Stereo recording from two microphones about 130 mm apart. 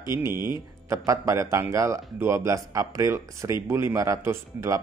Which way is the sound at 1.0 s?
25° right (ahead or behind).